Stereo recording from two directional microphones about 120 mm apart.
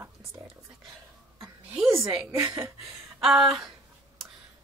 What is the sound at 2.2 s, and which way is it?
Speech, 20° right (ahead or behind).